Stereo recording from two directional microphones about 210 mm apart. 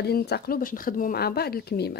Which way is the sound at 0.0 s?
50° left (ahead or behind).